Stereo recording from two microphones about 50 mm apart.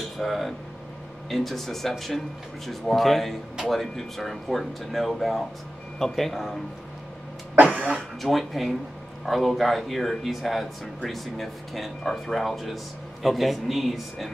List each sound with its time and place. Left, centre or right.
0.2 s speech: centre
7.6 s speech: right
7.9 s speech: centre